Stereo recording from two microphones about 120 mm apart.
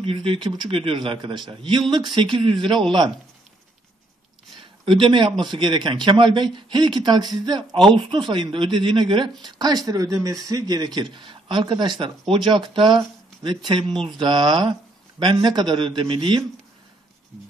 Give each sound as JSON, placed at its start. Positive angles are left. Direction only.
{"t": 0.0, "sound": "a man's voice", "side_deg": -50}
{"t": 4.8, "sound": "a man's voice", "side_deg": -45}
{"t": 11.0, "sound": "a man's voice", "side_deg": -40}